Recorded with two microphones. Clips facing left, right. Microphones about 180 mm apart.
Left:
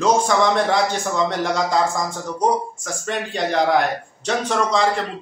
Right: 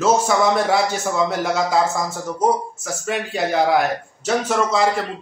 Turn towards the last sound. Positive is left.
turn(degrees=-5)  # may be behind; listen again after turning